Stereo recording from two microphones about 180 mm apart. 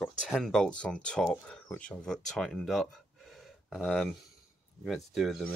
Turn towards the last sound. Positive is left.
turn(degrees=0)  # may be behind; listen again after turning